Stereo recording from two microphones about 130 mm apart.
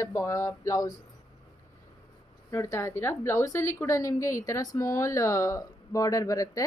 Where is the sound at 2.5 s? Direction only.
20° left (ahead or behind).